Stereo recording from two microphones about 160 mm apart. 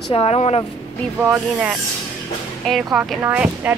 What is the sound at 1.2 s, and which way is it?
A woman's voice, 10° right (ahead or behind).